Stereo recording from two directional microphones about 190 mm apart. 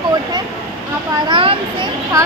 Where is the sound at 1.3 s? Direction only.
30° right (ahead or behind).